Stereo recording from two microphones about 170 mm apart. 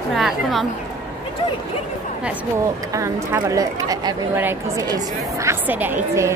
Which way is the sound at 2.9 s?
20° right (ahead or behind).